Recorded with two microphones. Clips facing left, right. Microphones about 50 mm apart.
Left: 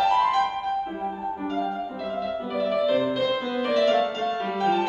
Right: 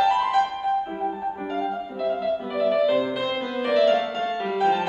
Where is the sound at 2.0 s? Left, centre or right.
Centre.